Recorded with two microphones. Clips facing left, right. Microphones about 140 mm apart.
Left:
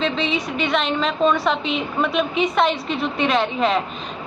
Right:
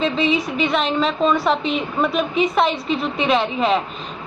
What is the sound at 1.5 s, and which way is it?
Speech, 40° right (ahead or behind).